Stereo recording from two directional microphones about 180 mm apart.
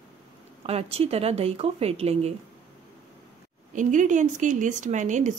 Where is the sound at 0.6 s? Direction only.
35° right (ahead or behind).